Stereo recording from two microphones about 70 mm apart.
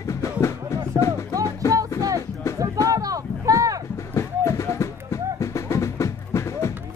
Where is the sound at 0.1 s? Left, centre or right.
Left.